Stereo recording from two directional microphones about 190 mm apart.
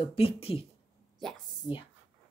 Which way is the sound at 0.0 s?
30° left (ahead or behind).